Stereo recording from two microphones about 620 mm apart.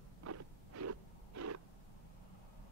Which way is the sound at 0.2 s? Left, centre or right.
Right.